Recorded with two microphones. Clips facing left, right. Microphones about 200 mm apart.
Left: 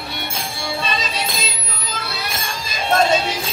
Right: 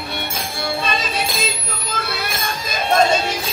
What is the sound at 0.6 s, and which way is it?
Music, 55° right (ahead or behind).